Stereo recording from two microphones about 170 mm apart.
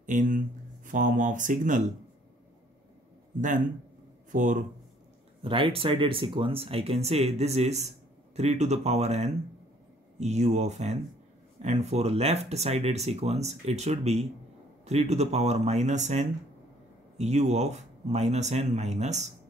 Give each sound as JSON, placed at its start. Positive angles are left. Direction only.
{"t": 0.0, "sound": "speech", "side_deg": -50}
{"t": 3.3, "sound": "speech", "side_deg": -50}
{"t": 5.4, "sound": "speech", "side_deg": -30}